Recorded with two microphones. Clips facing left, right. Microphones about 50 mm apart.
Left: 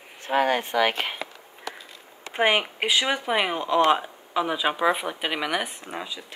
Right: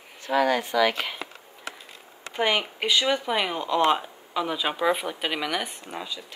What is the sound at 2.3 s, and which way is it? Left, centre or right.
Speech, left.